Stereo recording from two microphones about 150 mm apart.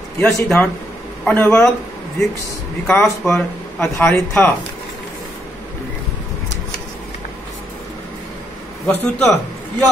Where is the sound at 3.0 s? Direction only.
Centre (ahead or behind).